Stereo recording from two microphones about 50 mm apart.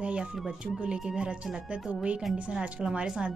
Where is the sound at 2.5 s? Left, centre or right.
Centre.